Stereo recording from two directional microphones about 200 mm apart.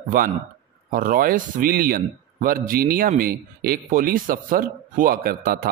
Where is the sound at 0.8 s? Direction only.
45° right (ahead or behind).